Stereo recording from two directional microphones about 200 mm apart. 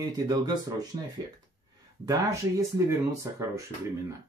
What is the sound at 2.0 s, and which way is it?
Speech, 15° right (ahead or behind).